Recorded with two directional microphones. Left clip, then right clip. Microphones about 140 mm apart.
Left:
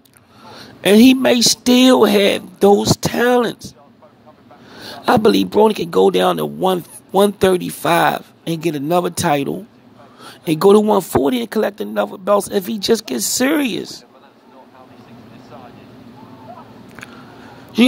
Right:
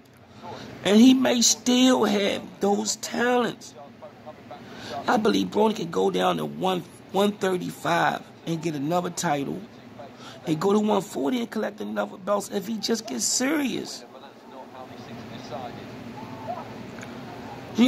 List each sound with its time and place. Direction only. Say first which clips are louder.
0.6 s speech: left 8 dB; 45° left (ahead or behind)
4.7 s speech: left 9 dB; 45° left (ahead or behind)
10.2 s a sound: left 12 dB; 45° left (ahead or behind)
10.9 s speech: left 10 dB; 40° left (ahead or behind)
17.8 s speech: left 8 dB; 40° left (ahead or behind)